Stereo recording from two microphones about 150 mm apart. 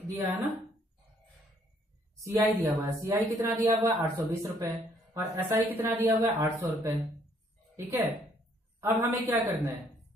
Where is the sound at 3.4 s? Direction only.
20° right (ahead or behind).